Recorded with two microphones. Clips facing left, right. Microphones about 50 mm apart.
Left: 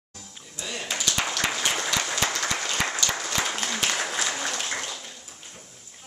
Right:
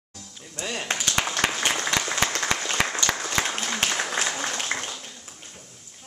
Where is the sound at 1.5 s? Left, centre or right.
Right.